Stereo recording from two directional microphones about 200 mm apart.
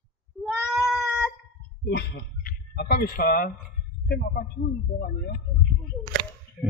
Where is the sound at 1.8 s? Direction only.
50° left (ahead or behind).